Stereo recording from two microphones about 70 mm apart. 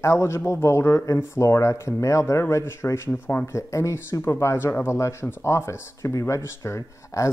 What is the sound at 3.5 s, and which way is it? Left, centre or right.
Speech, left.